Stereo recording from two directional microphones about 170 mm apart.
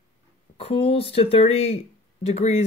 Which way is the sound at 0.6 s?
35° left (ahead or behind).